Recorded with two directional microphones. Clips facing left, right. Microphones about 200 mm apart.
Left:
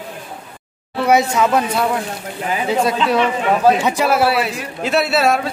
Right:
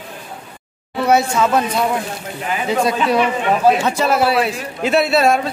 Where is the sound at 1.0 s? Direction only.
15° left (ahead or behind).